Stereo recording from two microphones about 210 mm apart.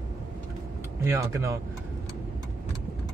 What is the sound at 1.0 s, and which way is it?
Speech, 15° right (ahead or behind).